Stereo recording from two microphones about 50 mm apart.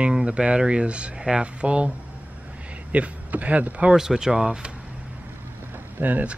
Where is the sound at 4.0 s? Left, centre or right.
Centre.